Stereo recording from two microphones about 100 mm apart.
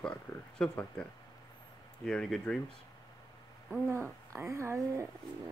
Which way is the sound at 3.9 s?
30° right (ahead or behind).